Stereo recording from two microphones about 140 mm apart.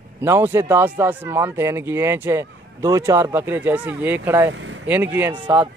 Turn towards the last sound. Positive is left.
turn(degrees=-35)  # may be behind; listen again after turning